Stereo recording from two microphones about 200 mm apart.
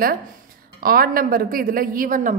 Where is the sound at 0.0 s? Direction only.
45° right (ahead or behind).